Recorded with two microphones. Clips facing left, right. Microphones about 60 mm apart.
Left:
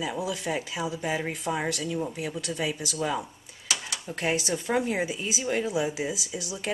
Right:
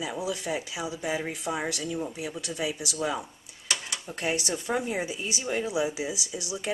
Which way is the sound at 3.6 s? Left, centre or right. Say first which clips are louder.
Even; centre.